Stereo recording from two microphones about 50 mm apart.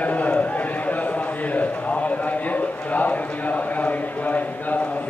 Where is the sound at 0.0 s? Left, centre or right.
Left.